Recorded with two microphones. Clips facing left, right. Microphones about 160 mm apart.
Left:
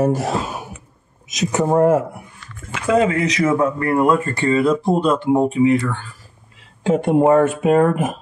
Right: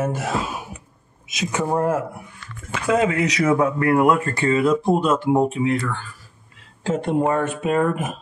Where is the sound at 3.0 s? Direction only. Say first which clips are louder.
Left 4 dB; 5° right (ahead or behind).